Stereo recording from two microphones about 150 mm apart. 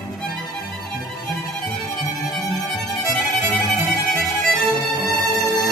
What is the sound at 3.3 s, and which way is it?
Violin, centre (ahead or behind).